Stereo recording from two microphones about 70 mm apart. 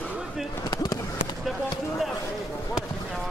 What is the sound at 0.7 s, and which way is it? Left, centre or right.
Fireworks, left.